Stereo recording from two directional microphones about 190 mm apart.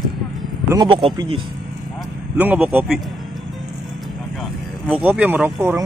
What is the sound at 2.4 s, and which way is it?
Speech, 10° right (ahead or behind).